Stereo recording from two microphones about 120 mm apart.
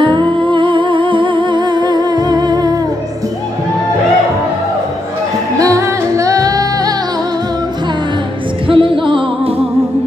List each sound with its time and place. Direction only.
0.0 s music: 40° right (ahead or behind)
5.6 s music: 25° right (ahead or behind)
8.6 s music: 45° right (ahead or behind)